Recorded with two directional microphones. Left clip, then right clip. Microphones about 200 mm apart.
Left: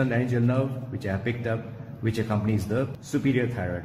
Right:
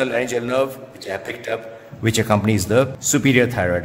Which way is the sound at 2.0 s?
35° right (ahead or behind).